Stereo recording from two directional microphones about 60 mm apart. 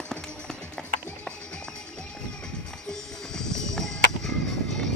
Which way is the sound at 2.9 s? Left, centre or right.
Centre.